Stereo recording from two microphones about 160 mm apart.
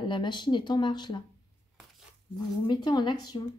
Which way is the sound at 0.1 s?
30° left (ahead or behind).